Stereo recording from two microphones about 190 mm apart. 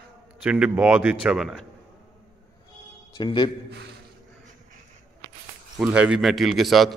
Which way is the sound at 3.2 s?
25° left (ahead or behind).